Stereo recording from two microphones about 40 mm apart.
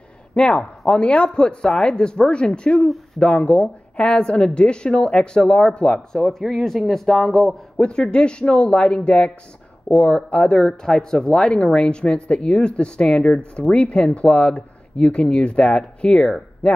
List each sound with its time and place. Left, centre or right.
0.3 s a woman's voice: left
6.1 s speech: centre
7.7 s a woman's voice: left